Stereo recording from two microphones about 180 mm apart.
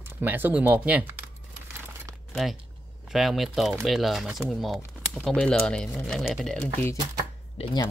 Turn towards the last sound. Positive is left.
turn(degrees=25)  # may be behind; listen again after turning